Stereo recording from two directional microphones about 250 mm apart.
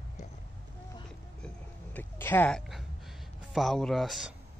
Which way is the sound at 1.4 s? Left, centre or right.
Centre.